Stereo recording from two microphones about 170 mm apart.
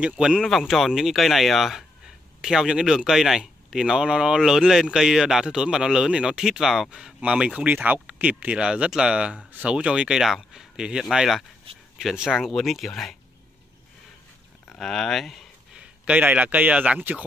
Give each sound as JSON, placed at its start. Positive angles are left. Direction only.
{"t": 0.0, "sound": "speech", "side_deg": -5}
{"t": 11.7, "sound": "a sound", "side_deg": -35}
{"t": 12.0, "sound": "speech", "side_deg": 0}
{"t": 14.7, "sound": "speech", "side_deg": 0}